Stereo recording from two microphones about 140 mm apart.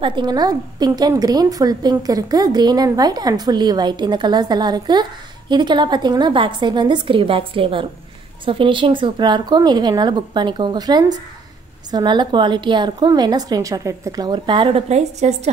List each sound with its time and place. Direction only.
0.0 s a woman's voice: 35° right (ahead or behind)
14.9 s a woman's voice: 50° right (ahead or behind)